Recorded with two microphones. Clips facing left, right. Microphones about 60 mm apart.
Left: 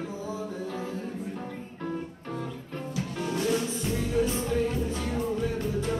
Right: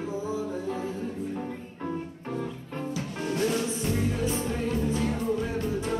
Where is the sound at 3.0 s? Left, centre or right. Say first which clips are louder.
Right 1 dB; centre.